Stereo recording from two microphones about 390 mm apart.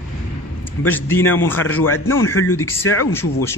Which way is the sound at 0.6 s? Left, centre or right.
Centre.